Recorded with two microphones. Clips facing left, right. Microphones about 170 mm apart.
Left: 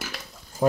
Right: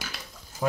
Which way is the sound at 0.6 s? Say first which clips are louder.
Left 5 dB; 30° left (ahead or behind).